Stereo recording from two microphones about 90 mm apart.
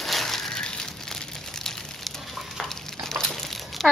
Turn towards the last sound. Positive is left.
turn(degrees=0)  # may be behind; listen again after turning